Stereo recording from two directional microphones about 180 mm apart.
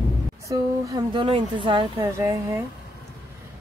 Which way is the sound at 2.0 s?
15° right (ahead or behind).